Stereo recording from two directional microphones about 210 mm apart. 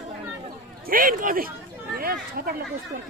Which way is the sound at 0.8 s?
45° right (ahead or behind).